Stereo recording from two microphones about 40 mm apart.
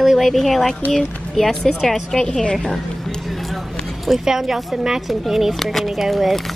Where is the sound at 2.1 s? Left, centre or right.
Centre.